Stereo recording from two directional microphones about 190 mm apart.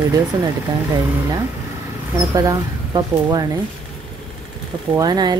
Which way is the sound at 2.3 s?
20° right (ahead or behind).